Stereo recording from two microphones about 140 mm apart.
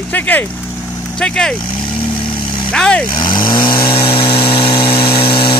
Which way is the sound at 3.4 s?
35° left (ahead or behind).